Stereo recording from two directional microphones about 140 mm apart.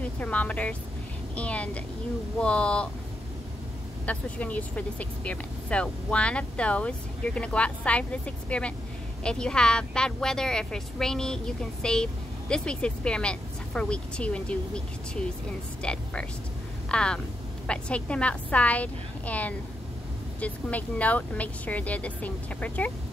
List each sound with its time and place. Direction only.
0.0 s speech: 10° left (ahead or behind)
4.0 s speech: 10° left (ahead or behind)
15.8 s speech: 10° left (ahead or behind)